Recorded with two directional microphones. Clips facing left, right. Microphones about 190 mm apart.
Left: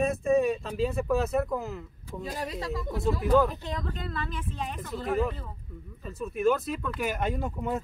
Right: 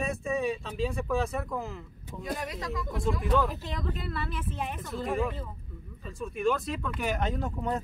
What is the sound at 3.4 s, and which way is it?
Speech, 5° right (ahead or behind).